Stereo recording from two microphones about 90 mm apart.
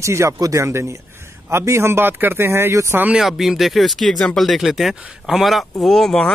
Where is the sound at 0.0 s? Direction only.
30° right (ahead or behind).